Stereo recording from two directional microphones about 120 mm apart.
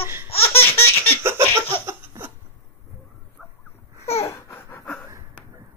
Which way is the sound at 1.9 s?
20° right (ahead or behind).